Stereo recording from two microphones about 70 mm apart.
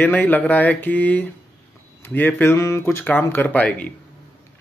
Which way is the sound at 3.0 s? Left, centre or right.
Left.